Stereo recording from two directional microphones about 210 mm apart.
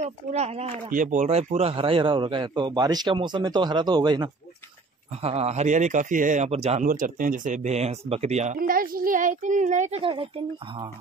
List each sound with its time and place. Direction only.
0.0 s speech: 30° right (ahead or behind)